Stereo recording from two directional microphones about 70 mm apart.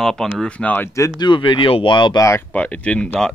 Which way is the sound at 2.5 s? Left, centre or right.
Centre.